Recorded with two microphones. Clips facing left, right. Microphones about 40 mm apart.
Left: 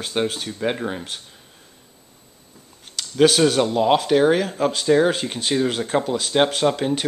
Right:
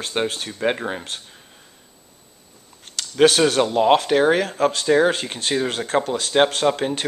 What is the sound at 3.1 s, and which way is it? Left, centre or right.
Speech, centre.